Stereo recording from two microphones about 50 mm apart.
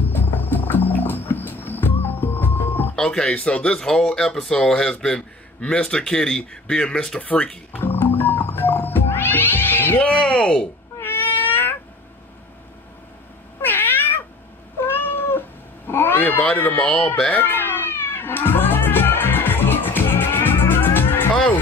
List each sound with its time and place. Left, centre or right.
0.1 s music: left
3.0 s a man's voice: centre
7.8 s music: left
9.9 s a man's voice: left
11.0 s cat: left
13.6 s cat: left
16.5 s speech: left
17.4 s cat: left